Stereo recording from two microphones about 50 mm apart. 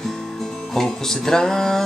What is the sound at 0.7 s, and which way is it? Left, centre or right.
Music, centre.